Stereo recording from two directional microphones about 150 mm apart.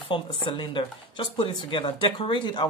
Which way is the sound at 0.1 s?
30° left (ahead or behind).